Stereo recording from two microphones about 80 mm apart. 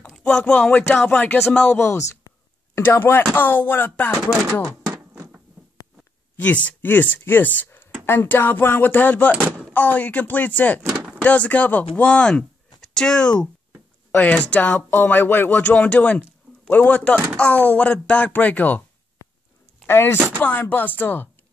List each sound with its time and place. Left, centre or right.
0.1 s speech: centre
1.8 s speech: left
2.3 s a sound: left
2.8 s speech: left
6.3 s speech: centre
19.9 s speech: left